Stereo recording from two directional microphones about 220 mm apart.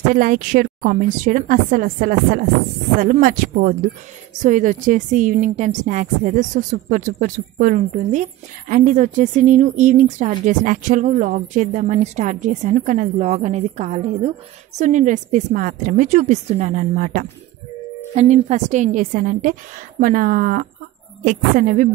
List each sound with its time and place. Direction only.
0.1 s a woman's voice: 40° right (ahead or behind)